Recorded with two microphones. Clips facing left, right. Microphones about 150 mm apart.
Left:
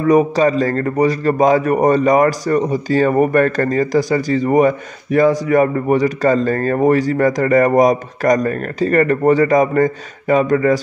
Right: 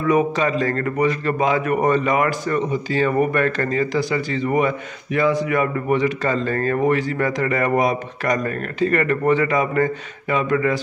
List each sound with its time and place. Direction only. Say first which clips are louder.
0.0 s a man's voice: left 6 dB; 35° left (ahead or behind)